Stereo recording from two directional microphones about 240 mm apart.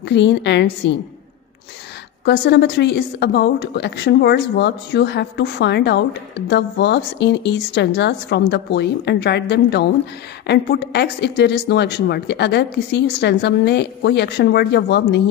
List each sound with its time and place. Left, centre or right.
0.1 s a woman's voice: left
2.2 s a woman's voice: left